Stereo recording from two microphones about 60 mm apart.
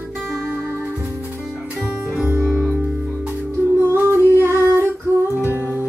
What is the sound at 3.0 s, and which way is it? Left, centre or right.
Music, centre.